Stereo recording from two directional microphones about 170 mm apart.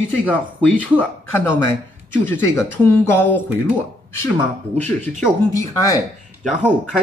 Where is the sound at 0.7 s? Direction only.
10° left (ahead or behind).